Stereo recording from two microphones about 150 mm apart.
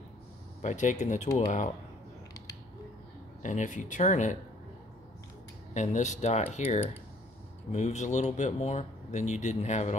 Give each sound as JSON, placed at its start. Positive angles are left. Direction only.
{"t": 0.6, "sound": "speech", "side_deg": 55}
{"t": 3.4, "sound": "speech", "side_deg": 55}
{"t": 5.8, "sound": "speech", "side_deg": 55}